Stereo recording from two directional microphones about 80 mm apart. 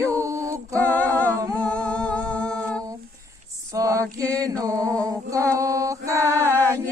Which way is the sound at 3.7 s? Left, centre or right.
Right.